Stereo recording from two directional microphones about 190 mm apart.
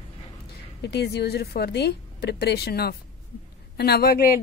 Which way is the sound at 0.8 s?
60° left (ahead or behind).